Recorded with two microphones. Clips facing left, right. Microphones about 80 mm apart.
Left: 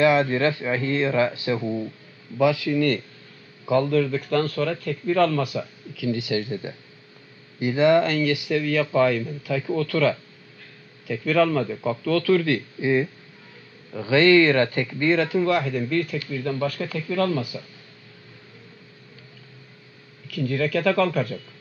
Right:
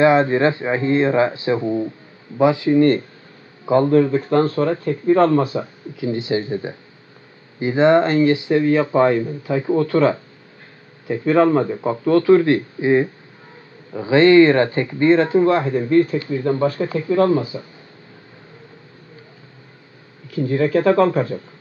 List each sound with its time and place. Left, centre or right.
0.0 s speech: right
20.2 s speech: right